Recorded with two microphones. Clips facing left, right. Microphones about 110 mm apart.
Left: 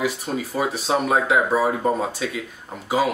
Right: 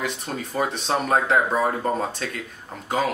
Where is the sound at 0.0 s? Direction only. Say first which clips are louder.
Left 4 dB; 5° left (ahead or behind).